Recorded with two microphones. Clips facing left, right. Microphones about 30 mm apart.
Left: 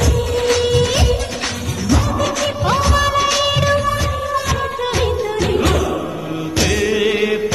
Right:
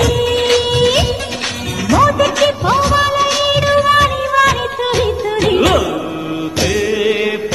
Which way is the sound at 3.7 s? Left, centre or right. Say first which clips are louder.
Right 7 dB; right.